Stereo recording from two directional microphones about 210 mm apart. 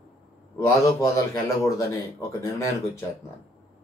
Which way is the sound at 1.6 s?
15° left (ahead or behind).